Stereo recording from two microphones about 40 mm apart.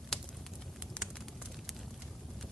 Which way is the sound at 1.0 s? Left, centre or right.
Left.